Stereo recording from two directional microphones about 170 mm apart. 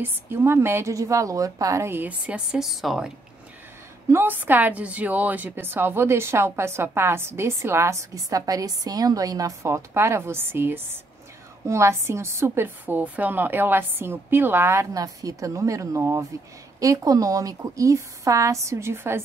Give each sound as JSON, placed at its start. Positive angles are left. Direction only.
{"t": 0.0, "sound": "a woman's voice", "side_deg": -15}
{"t": 4.1, "sound": "a woman's voice", "side_deg": -10}